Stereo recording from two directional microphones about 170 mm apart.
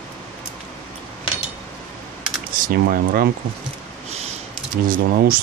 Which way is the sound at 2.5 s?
55° right (ahead or behind).